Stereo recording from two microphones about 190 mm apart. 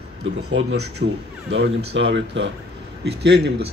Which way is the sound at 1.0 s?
55° right (ahead or behind).